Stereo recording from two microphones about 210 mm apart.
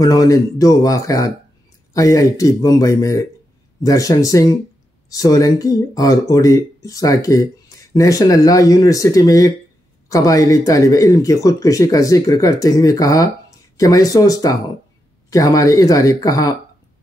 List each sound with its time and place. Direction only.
0.0 s speech: 15° left (ahead or behind)